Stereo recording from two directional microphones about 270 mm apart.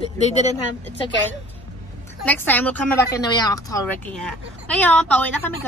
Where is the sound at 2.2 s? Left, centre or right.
Centre.